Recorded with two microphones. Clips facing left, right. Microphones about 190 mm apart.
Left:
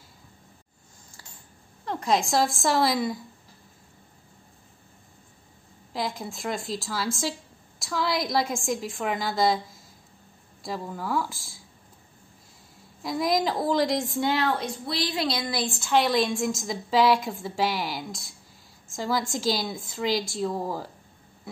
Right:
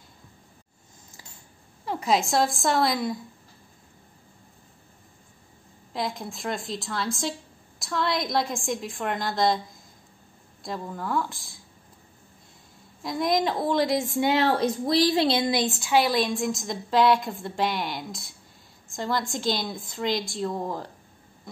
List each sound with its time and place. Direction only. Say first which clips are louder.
1.9 s a woman's voice: right 1 dB; 5° right (ahead or behind)
5.9 s a woman's voice: even; centre (ahead or behind)
13.0 s a woman's voice: even; centre (ahead or behind)
14.2 s a woman's voice: right 4 dB; 25° right (ahead or behind)
14.6 s a woman's voice: right 8 dB; 40° right (ahead or behind); by 16.0 s 15° right (ahead or behind)
16.0 s a woman's voice: even; centre (ahead or behind)